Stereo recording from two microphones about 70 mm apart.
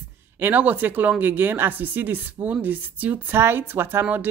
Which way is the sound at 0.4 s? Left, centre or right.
Right.